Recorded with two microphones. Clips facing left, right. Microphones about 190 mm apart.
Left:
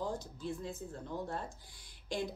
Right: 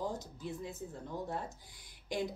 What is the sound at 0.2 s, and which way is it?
Speech, 20° right (ahead or behind).